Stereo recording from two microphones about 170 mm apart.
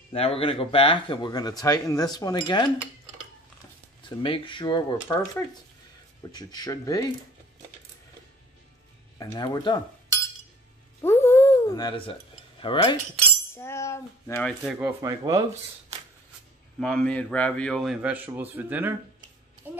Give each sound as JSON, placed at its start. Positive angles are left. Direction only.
{"t": 0.1, "sound": "speech", "side_deg": 35}
{"t": 4.0, "sound": "speech", "side_deg": 30}
{"t": 6.3, "sound": "speech", "side_deg": 25}
{"t": 9.2, "sound": "speech", "side_deg": 25}
{"t": 11.0, "sound": "cutlery", "side_deg": 15}
{"t": 13.6, "sound": "a sound", "side_deg": 15}
{"t": 14.6, "sound": "a man's voice", "side_deg": -5}
{"t": 15.0, "sound": "speech", "side_deg": -20}
{"t": 16.8, "sound": "a man's voice", "side_deg": 5}
{"t": 19.6, "sound": "a sound", "side_deg": -10}